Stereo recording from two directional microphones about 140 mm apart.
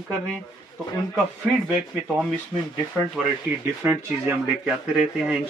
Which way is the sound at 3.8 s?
15° right (ahead or behind).